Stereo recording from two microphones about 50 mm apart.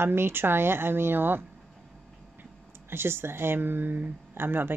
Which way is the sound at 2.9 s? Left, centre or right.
Right.